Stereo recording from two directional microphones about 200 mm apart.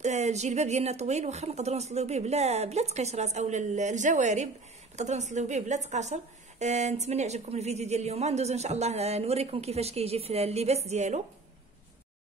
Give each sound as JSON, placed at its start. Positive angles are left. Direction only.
{"t": 0.0, "sound": "a woman's voice", "side_deg": -35}